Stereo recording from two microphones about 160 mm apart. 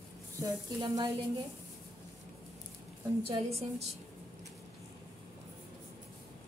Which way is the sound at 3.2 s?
40° right (ahead or behind).